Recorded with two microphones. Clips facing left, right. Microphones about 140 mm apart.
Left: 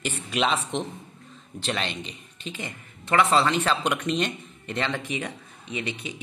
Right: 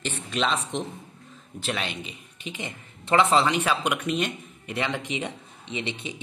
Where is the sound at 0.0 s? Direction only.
10° left (ahead or behind).